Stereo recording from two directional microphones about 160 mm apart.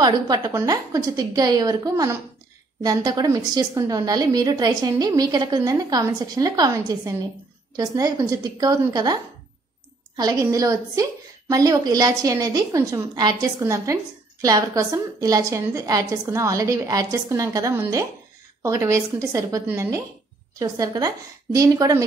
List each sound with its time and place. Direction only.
0.0 s a woman's voice: 25° right (ahead or behind)